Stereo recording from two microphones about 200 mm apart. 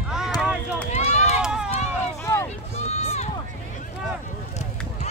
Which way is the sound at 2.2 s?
15° left (ahead or behind).